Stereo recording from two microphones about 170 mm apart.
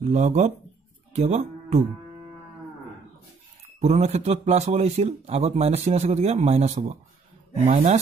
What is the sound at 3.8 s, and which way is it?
A man's voice, 40° right (ahead or behind).